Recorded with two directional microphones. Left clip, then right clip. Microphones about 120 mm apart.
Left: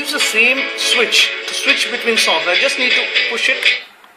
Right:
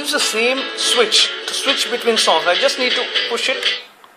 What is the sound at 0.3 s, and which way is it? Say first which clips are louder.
Speech: left 7 dB; 35° right (ahead or behind).